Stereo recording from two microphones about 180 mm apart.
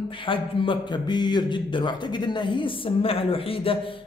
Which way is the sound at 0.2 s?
30° left (ahead or behind).